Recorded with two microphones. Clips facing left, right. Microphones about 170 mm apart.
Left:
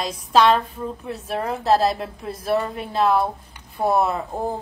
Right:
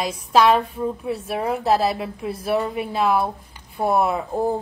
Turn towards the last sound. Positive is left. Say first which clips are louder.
# right 2 dB
turn(degrees=-10)  # may be behind; listen again after turning